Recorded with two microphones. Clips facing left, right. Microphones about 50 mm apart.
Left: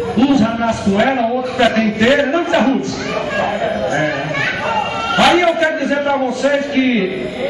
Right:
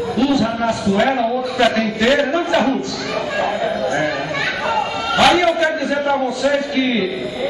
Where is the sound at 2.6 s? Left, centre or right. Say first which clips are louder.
Left 3 dB; left.